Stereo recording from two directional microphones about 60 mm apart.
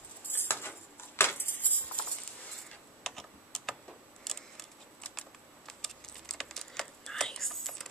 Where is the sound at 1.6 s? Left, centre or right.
Left.